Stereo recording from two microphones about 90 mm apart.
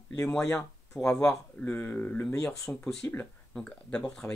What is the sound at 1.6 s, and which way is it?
Speech, 20° left (ahead or behind).